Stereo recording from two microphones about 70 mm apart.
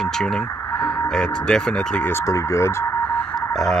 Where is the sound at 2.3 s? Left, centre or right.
Left.